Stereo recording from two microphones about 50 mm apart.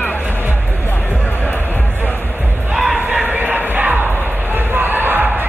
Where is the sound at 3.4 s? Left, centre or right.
Right.